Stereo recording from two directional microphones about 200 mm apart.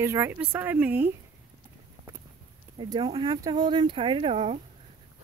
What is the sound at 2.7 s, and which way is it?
Speech, 20° right (ahead or behind).